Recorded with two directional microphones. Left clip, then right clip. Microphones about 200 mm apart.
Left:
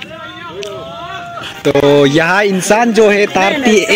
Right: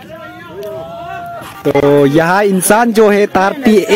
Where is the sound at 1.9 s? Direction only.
15° right (ahead or behind).